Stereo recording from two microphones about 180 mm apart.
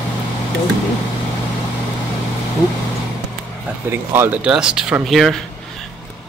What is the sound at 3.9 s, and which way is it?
Speech, 10° right (ahead or behind).